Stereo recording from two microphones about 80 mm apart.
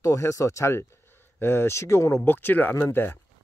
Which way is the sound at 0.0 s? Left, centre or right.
Left.